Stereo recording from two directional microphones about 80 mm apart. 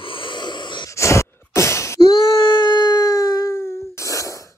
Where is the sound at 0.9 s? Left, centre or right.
Left.